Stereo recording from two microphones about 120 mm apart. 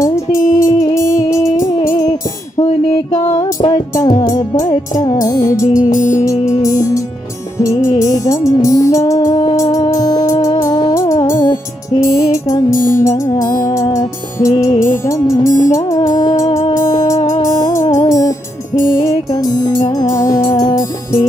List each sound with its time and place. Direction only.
0.0 s music: 25° left (ahead or behind)
7.5 s music: 25° left (ahead or behind)
9.3 s music: 45° left (ahead or behind)
9.6 s music: 25° left (ahead or behind)
17.4 s music: 25° left (ahead or behind)
20.1 s music: 25° left (ahead or behind)